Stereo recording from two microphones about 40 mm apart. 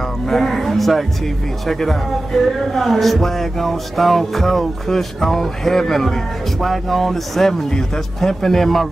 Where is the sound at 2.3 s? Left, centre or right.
Centre.